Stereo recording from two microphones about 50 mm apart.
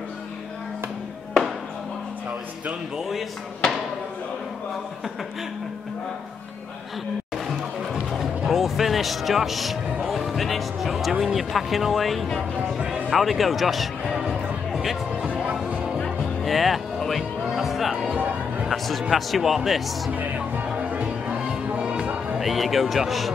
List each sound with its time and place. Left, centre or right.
7.4 s music: centre
8.5 s speech: centre
12.7 s music: centre
13.1 s speech: centre
14.1 s music: centre
14.7 s music: centre
16.4 s speech: centre
17.5 s music: centre
18.1 s music: right
18.7 s speech: centre
20.1 s music: right
21.3 s music: centre
22.4 s speech: centre